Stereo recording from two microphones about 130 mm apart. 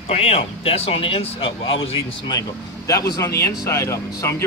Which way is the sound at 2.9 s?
25° left (ahead or behind).